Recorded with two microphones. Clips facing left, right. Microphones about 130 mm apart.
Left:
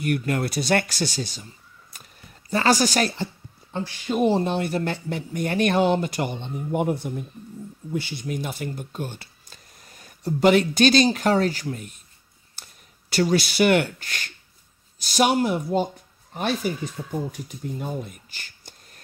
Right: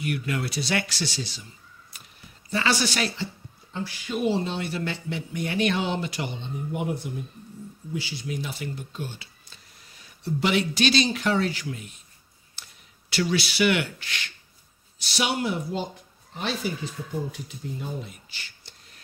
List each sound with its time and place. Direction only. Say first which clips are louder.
0.0 s speech: left 5 dB; 45° left (ahead or behind)
12.6 s a sound: left 1 dB; 45° left (ahead or behind)
13.1 s speech: left 5 dB; 45° left (ahead or behind)